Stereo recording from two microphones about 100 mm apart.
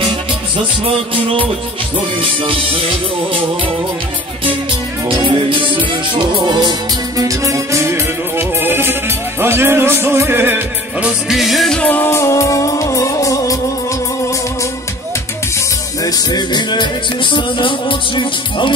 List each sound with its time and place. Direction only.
0.8 s music: 60° right (ahead or behind)
5.0 s music: 60° right (ahead or behind)
7.2 s music: 35° right (ahead or behind)
11.2 s music: centre (ahead or behind)
11.8 s music: 20° left (ahead or behind)
16.0 s music: 40° left (ahead or behind); by 18.7 s 55° left (ahead or behind)